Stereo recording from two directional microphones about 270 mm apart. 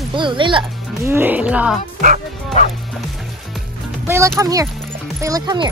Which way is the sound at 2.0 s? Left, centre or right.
Right.